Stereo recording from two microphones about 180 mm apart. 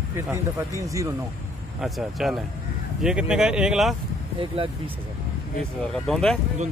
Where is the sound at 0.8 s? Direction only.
20° right (ahead or behind).